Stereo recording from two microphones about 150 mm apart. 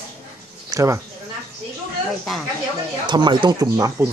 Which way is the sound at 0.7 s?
20° right (ahead or behind).